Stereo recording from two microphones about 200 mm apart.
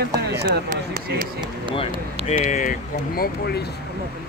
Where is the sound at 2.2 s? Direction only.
35° left (ahead or behind).